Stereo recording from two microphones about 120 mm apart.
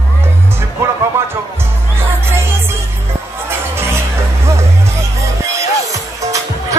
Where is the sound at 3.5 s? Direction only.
20° right (ahead or behind).